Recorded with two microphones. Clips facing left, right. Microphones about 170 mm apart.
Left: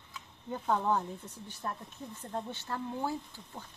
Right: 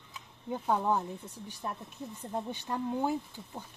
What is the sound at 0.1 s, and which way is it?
Speech, 10° right (ahead or behind).